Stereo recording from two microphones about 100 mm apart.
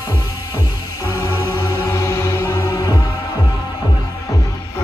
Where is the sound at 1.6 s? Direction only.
30° left (ahead or behind).